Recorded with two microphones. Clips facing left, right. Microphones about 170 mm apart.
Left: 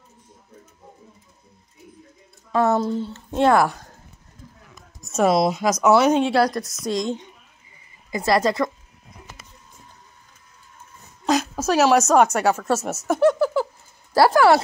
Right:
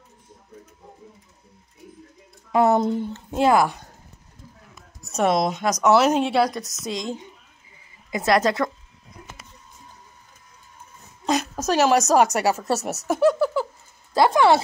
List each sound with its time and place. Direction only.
2.5 s speech: 15° right (ahead or behind)
3.3 s speech: 5° right (ahead or behind)
5.0 s speech: centre (ahead or behind)
11.2 s a sound: centre (ahead or behind)
12.1 s speech: centre (ahead or behind)